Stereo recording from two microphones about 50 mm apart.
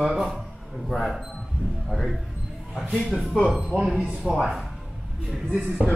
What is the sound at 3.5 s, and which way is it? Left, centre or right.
Speech, right.